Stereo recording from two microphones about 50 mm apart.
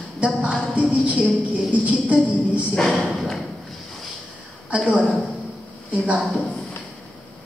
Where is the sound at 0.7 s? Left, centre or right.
Right.